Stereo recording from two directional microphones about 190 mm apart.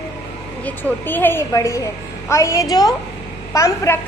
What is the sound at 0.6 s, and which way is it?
A woman's voice, 10° left (ahead or behind).